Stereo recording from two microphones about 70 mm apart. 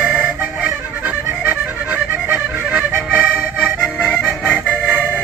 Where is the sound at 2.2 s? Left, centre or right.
Right.